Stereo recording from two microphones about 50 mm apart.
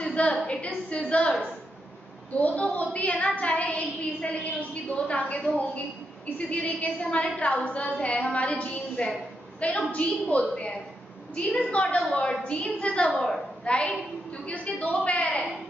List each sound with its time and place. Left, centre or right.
0.1 s a sound: left
0.5 s a woman's voice: left
2.3 s a woman's voice: left